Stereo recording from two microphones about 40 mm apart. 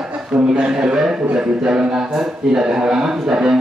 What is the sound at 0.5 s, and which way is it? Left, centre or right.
A man's voice, right.